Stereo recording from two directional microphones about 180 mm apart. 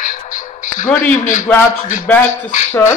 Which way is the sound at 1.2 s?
45° left (ahead or behind).